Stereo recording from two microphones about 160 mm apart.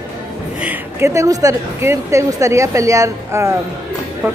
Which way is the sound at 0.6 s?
10° right (ahead or behind).